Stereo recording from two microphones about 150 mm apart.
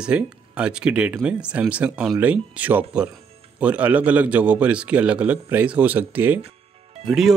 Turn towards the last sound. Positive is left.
turn(degrees=0)  # may be behind; listen again after turning